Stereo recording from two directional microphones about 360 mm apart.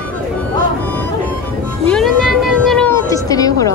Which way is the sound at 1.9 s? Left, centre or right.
Centre.